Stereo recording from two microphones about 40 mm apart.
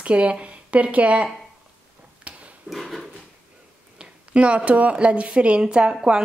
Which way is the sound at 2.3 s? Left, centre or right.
Right.